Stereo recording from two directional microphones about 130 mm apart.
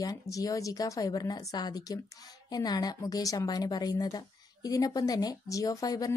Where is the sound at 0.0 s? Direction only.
25° left (ahead or behind).